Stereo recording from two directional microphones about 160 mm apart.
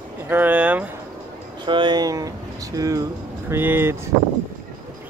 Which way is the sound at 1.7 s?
30° right (ahead or behind).